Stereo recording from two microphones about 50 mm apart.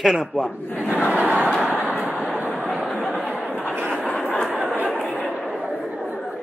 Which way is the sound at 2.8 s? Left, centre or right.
Centre.